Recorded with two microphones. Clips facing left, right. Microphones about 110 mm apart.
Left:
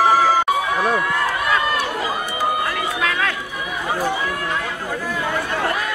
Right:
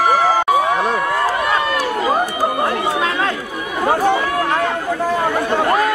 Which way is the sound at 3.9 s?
60° right (ahead or behind).